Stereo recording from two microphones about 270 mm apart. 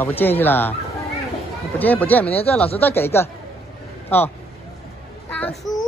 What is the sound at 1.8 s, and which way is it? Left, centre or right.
A man's voice, centre.